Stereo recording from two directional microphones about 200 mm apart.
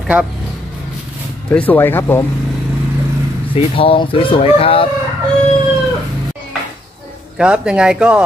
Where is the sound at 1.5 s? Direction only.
10° left (ahead or behind).